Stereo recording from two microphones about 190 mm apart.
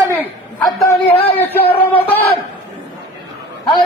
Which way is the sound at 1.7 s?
30° left (ahead or behind).